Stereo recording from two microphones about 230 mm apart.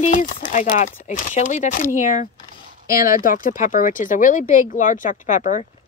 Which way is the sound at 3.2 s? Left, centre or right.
Left.